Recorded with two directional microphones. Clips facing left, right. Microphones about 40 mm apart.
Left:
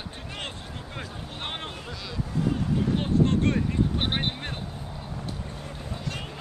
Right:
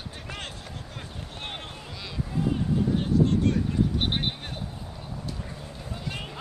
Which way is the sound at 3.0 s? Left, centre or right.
Left.